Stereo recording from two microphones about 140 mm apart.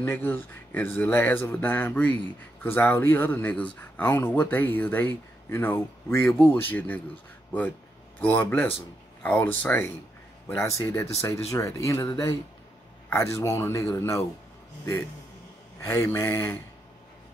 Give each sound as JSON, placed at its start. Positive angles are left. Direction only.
{"t": 0.0, "sound": "speech", "side_deg": 15}
{"t": 8.2, "sound": "speech", "side_deg": 15}
{"t": 15.8, "sound": "speech", "side_deg": 20}